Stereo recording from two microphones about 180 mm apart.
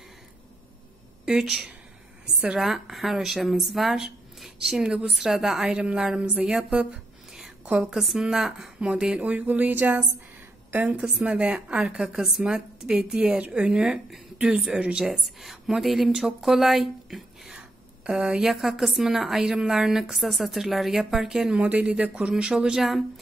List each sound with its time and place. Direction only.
1.2 s a woman's voice: centre (ahead or behind)
7.3 s a sound: 5° right (ahead or behind)
7.8 s a woman's voice: centre (ahead or behind)